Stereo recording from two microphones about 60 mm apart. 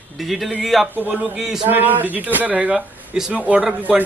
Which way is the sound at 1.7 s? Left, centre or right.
Right.